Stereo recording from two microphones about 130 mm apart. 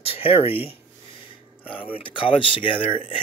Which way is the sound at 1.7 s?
45° left (ahead or behind).